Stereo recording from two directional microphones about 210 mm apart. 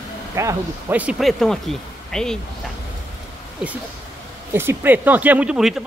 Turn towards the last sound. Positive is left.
turn(degrees=0)  # may be behind; listen again after turning